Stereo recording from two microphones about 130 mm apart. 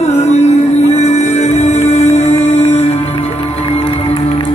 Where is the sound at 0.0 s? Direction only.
60° left (ahead or behind).